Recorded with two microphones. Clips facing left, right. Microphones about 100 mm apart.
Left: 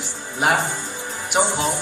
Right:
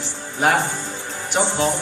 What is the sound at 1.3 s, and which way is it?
Speech, 15° left (ahead or behind).